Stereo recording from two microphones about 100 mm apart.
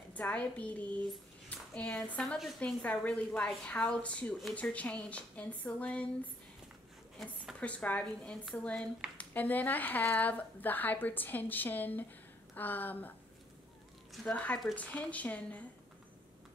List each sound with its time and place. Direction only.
0.1 s speech: 15° left (ahead or behind)
7.2 s a woman's voice: centre (ahead or behind)
7.6 s a woman's voice: 15° left (ahead or behind)
14.2 s speech: 15° left (ahead or behind)